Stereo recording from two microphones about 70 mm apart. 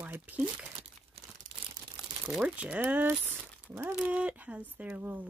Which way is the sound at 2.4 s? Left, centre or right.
Centre.